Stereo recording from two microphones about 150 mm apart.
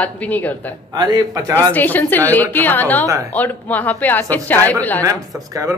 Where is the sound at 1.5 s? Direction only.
10° left (ahead or behind).